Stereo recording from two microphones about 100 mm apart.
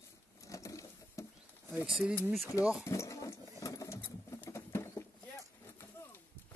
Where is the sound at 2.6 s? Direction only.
10° right (ahead or behind).